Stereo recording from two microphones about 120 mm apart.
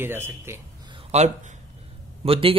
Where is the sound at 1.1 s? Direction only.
65° right (ahead or behind).